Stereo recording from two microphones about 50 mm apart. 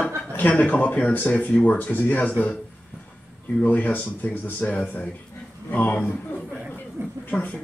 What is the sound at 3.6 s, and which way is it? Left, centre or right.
A man's voice, left.